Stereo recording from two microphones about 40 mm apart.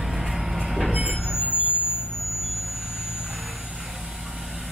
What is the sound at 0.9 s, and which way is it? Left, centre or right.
Train, right.